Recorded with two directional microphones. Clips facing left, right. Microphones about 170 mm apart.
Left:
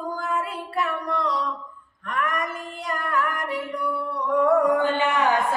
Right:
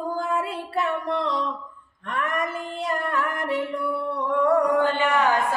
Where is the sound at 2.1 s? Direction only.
25° right (ahead or behind).